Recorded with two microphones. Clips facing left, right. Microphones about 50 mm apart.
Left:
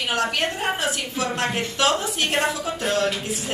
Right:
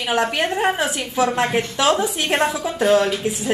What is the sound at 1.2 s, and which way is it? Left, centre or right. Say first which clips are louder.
Speech: right 7 dB; centre.